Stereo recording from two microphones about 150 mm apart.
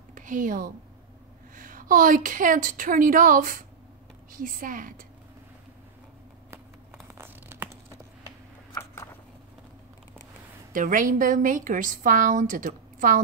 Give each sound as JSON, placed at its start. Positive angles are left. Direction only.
{"t": 0.1, "sound": "a woman's voice", "side_deg": -60}
{"t": 6.5, "sound": "tearing", "side_deg": -15}
{"t": 10.7, "sound": "a woman's voice", "side_deg": -65}